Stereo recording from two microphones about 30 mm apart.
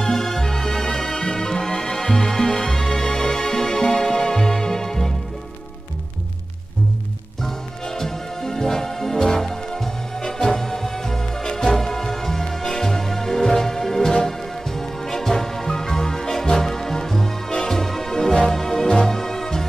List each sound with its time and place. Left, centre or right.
0.0 s music: centre
7.4 s music: centre